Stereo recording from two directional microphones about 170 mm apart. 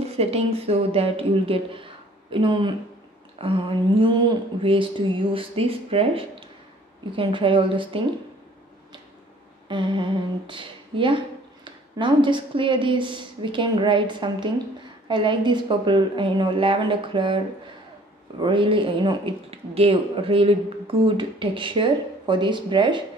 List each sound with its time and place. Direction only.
0.0 s speech: 35° right (ahead or behind)
9.7 s speech: 30° right (ahead or behind)
18.4 s speech: 30° right (ahead or behind)